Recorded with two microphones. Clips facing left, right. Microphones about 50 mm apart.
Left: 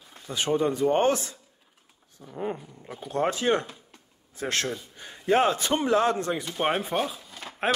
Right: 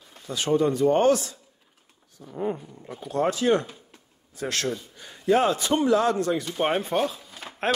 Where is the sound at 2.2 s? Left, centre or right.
Centre.